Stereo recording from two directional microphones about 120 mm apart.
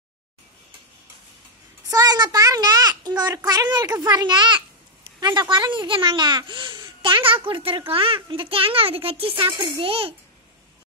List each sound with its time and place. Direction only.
1.9 s a child's voice: 30° right (ahead or behind); by 10.1 s 50° right (ahead or behind)